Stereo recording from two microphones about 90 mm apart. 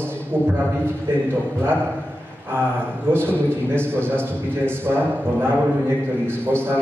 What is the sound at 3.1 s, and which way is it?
A man's voice, 25° right (ahead or behind).